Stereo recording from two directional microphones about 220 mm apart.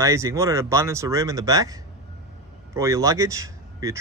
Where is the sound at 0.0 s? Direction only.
15° right (ahead or behind).